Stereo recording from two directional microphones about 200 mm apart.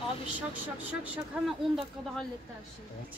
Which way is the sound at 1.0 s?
5° right (ahead or behind).